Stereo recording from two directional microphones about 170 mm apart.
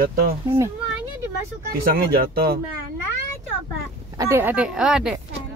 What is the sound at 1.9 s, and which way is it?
Speech, 65° right (ahead or behind).